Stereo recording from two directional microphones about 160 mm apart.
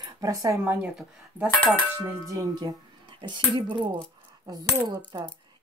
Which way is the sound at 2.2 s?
25° right (ahead or behind).